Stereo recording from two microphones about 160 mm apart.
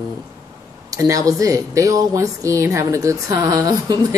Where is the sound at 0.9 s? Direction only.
20° right (ahead or behind).